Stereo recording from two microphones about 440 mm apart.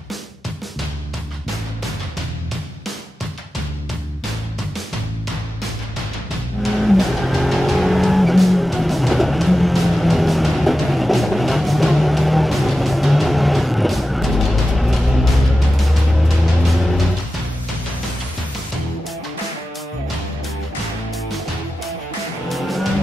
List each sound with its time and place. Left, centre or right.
6.6 s vehicle: centre
15.7 s music: centre
22.5 s vehicle: centre